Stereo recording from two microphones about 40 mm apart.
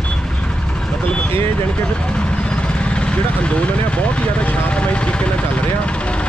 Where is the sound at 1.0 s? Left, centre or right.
Left.